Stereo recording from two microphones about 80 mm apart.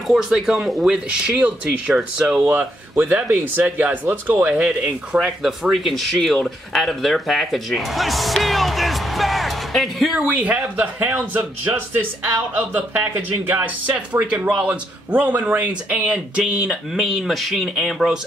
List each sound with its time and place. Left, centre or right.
0.1 s speech: centre
10.4 s speech: centre